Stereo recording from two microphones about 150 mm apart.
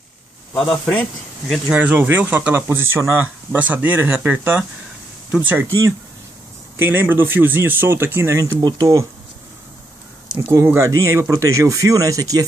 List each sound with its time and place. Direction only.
0.6 s speech: 10° left (ahead or behind)
1.7 s speech: 10° right (ahead or behind)
10.4 s speech: 15° right (ahead or behind)